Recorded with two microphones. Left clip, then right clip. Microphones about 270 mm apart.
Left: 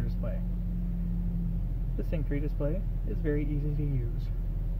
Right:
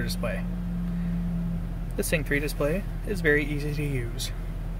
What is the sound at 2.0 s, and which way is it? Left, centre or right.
Speech, right.